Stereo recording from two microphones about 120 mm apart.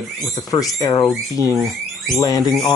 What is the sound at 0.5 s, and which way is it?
Speech, 30° left (ahead or behind).